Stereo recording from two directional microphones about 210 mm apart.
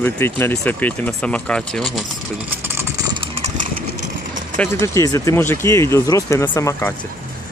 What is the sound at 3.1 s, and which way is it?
Engine, 30° right (ahead or behind).